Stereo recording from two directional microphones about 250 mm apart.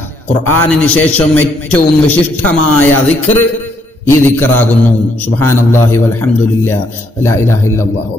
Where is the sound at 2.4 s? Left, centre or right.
Left.